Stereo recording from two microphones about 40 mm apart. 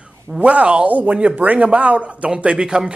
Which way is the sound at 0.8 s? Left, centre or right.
Right.